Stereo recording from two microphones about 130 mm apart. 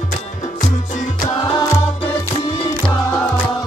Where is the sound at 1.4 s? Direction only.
45° left (ahead or behind).